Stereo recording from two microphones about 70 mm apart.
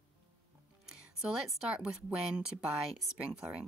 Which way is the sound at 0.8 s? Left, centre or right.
Centre.